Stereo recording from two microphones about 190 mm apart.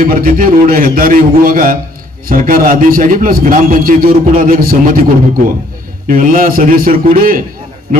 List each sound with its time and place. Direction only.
0.0 s a man's voice: 50° right (ahead or behind)
6.0 s a man's voice: 45° right (ahead or behind)